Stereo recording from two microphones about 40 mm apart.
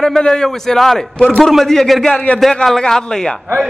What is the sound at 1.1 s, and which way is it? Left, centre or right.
Speech, left.